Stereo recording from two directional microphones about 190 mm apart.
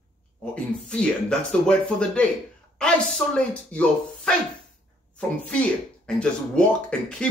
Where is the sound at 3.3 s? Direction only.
5° left (ahead or behind).